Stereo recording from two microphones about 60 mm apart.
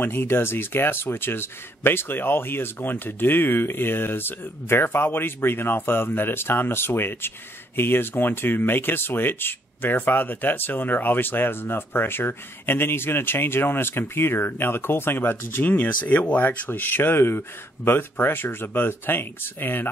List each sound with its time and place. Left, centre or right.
0.0 s speech: left